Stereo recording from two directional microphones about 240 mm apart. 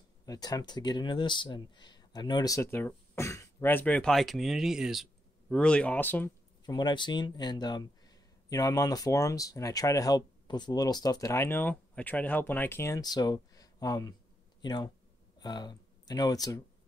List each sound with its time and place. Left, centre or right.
0.2 s speech: centre